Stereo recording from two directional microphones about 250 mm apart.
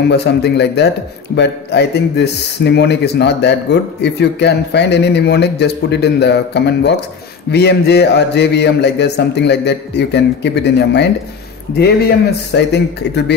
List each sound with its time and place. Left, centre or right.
0.1 s speech: left